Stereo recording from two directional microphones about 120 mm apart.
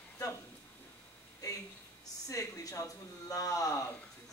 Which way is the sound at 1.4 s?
30° left (ahead or behind).